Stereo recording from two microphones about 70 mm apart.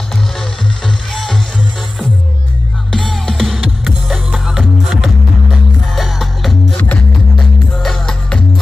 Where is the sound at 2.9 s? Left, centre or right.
Centre.